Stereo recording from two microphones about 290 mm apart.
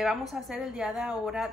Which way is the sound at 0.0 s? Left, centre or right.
Centre.